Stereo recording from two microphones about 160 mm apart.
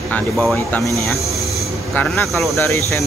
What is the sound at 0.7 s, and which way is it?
Speech, 10° left (ahead or behind).